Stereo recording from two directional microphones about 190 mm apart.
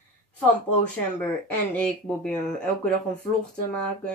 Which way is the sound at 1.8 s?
5° left (ahead or behind).